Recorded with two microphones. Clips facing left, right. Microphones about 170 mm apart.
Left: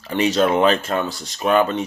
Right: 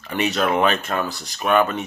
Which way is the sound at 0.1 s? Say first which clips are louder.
Left 3 dB; 30° left (ahead or behind).